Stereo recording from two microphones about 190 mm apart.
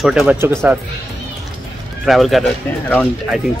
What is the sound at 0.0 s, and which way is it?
Speech, centre (ahead or behind).